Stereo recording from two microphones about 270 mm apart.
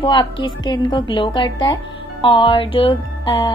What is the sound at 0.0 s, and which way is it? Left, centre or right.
Speech, centre.